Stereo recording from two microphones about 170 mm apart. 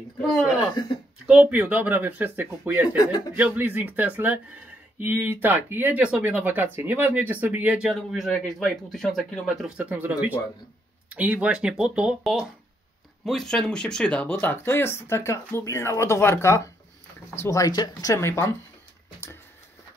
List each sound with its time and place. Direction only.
0.2 s speech: centre (ahead or behind)